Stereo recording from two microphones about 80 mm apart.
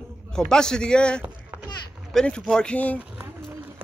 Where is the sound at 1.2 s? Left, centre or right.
Centre.